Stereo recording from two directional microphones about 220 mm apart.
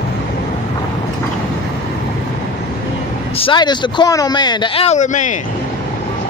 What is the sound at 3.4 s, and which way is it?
Speech, 20° left (ahead or behind).